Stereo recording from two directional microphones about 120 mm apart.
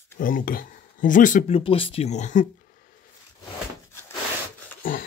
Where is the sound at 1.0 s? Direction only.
90° left.